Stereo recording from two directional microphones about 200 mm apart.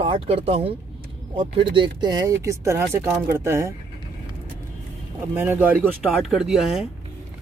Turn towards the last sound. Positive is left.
turn(degrees=0)  # may be behind; listen again after turning